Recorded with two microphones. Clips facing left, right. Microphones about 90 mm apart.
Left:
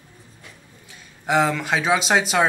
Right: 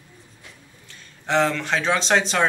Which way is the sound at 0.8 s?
10° left (ahead or behind).